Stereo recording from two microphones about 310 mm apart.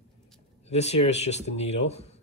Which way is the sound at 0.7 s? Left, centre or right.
Left.